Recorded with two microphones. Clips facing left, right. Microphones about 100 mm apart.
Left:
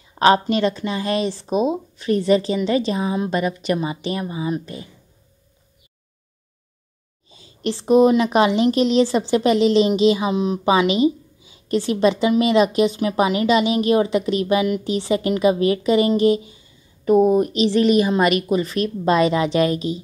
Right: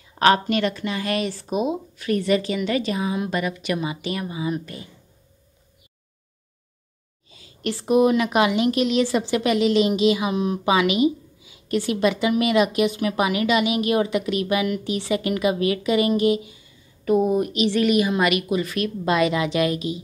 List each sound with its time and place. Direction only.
0.2 s a woman's voice: 25° left (ahead or behind)
7.2 s a woman's voice: 25° left (ahead or behind)